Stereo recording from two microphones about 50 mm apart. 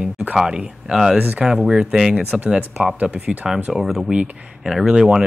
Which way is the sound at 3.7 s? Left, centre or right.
Centre.